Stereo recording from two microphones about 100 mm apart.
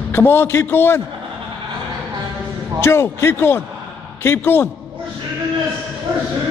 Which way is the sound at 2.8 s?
25° left (ahead or behind).